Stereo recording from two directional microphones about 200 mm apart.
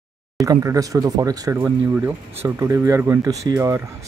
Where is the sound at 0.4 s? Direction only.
15° right (ahead or behind).